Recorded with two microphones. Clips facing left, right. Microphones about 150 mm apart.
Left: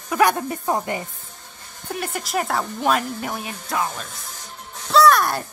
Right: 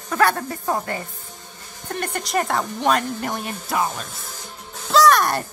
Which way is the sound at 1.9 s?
5° left (ahead or behind).